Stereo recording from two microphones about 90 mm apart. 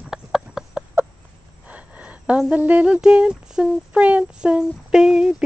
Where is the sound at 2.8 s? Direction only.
10° right (ahead or behind).